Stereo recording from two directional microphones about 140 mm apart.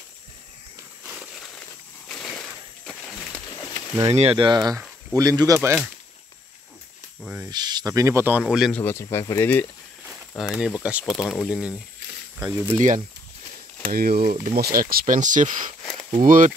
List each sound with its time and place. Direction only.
1.0 s a sound: 5° right (ahead or behind)
4.1 s speech: 45° right (ahead or behind); by 5.8 s 20° right (ahead or behind)
7.4 s speech: 30° right (ahead or behind); by 8.7 s 5° right (ahead or behind)
8.7 s speech: 15° left (ahead or behind)
10.3 s speech: 5° right (ahead or behind)
11.1 s speech: centre (ahead or behind)
12.7 s speech: 60° right (ahead or behind)
13.8 s speech: 90° right; by 15.6 s 65° right (ahead or behind)
15.8 s a sound: 5° left (ahead or behind)
16.1 s speech: 70° right (ahead or behind)